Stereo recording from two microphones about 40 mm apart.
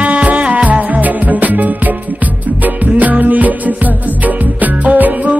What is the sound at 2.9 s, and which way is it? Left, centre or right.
Music, right.